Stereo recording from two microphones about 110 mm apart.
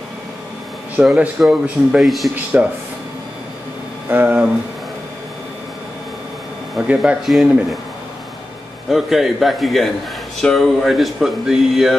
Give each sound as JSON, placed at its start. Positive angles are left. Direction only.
{"t": 1.0, "sound": "speech", "side_deg": -10}
{"t": 2.3, "sound": "speech", "side_deg": -15}
{"t": 4.1, "sound": "speech", "side_deg": -15}
{"t": 6.7, "sound": "speech", "side_deg": -5}
{"t": 8.9, "sound": "speech", "side_deg": 0}